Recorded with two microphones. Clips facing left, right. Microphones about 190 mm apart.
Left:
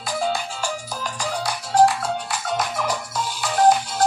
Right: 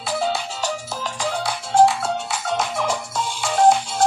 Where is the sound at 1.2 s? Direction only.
25° right (ahead or behind).